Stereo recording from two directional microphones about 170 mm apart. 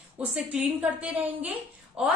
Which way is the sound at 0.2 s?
5° right (ahead or behind).